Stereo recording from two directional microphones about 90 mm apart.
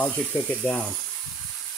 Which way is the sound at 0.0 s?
20° left (ahead or behind).